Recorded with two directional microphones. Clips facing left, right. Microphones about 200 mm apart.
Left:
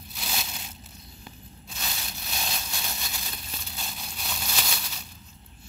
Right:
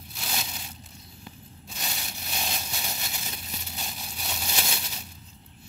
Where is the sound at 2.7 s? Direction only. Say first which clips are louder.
Right 1 dB; 15° right (ahead or behind).